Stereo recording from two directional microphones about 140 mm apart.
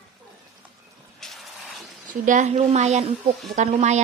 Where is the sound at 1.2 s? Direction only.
Centre (ahead or behind).